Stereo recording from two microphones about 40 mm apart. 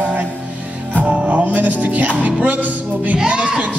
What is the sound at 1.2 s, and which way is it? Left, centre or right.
Speech, right.